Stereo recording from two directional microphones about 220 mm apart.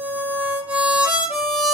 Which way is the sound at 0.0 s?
5° right (ahead or behind).